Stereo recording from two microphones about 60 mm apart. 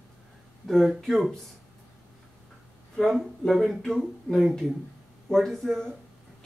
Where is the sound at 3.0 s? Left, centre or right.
Centre.